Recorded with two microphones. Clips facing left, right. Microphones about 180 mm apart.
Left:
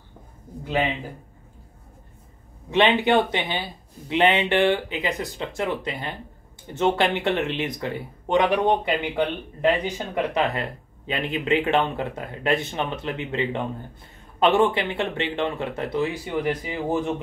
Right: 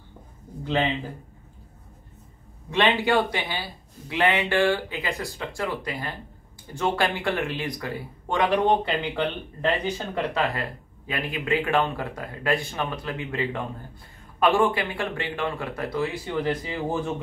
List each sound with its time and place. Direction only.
2.7 s speech: 20° left (ahead or behind)